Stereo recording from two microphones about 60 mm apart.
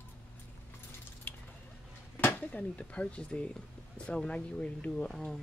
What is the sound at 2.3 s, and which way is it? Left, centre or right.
Speech, left.